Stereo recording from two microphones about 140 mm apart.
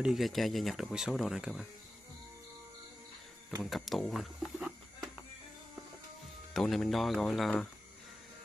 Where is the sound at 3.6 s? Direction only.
Centre (ahead or behind).